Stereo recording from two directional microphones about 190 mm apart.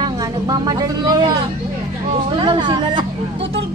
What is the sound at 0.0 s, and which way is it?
Vehicle, 20° right (ahead or behind).